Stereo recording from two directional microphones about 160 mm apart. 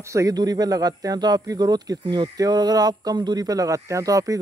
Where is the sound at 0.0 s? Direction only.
20° right (ahead or behind).